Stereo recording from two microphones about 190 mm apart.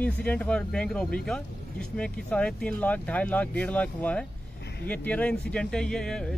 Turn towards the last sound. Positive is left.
turn(degrees=5)  # may be behind; listen again after turning